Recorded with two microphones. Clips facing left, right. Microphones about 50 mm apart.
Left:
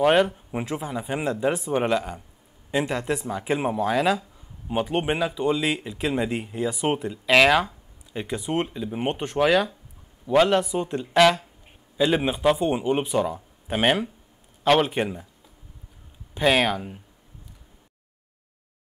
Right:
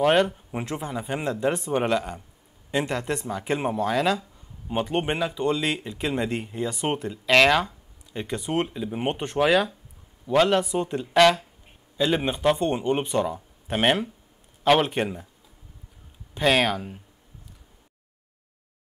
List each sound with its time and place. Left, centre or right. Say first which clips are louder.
0.0 s speech: left 1 dB; centre
16.3 s speech: left 1 dB; centre